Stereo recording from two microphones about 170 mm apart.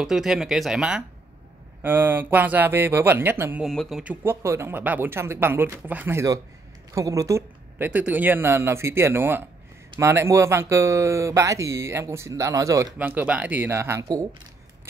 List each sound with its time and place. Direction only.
0.0 s speech: centre (ahead or behind)
3.6 s speech: centre (ahead or behind)
4.0 s speech: 10° right (ahead or behind)